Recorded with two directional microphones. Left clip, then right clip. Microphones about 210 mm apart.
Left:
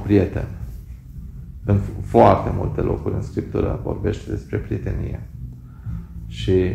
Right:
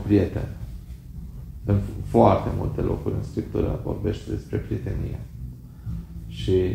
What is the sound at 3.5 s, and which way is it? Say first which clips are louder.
Speech: left 3 dB; 20° left (ahead or behind).